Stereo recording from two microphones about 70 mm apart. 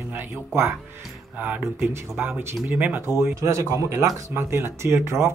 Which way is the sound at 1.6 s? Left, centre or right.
Right.